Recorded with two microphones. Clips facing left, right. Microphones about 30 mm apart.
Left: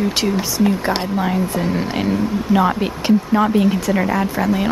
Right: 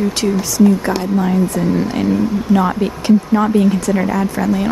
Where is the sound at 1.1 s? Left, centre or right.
Left.